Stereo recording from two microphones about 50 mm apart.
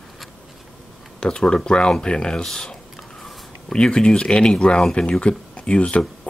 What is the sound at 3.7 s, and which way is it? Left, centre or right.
Speech, centre.